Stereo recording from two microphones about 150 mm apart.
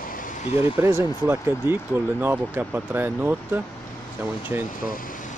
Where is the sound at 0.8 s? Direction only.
15° right (ahead or behind).